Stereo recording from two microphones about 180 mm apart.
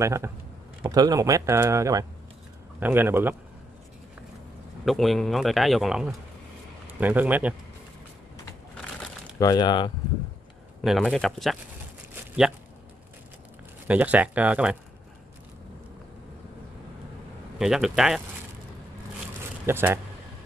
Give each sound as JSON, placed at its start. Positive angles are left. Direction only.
{"t": 0.0, "sound": "speech", "side_deg": -15}
{"t": 4.8, "sound": "speech", "side_deg": 0}
{"t": 9.4, "sound": "speech", "side_deg": 20}
{"t": 10.8, "sound": "speech", "side_deg": 0}
{"t": 13.8, "sound": "speech", "side_deg": -10}
{"t": 17.6, "sound": "speech", "side_deg": 0}
{"t": 19.6, "sound": "speech", "side_deg": -15}